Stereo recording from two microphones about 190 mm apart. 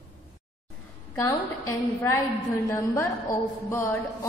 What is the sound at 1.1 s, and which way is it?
A woman's voice, 15° left (ahead or behind).